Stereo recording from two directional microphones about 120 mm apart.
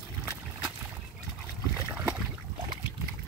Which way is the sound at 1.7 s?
20° right (ahead or behind).